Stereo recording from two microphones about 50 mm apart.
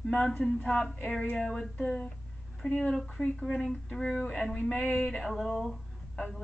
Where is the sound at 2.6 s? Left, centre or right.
Left.